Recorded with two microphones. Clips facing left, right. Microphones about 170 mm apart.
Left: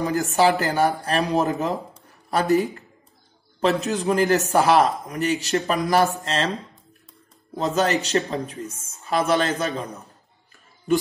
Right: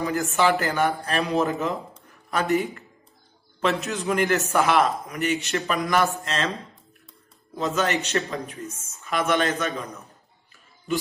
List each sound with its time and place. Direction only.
0.0 s speech: 40° left (ahead or behind)
7.7 s speech: 35° left (ahead or behind)